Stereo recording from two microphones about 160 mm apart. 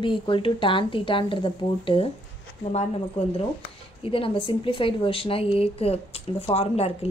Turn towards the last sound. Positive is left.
turn(degrees=40)  # may be behind; listen again after turning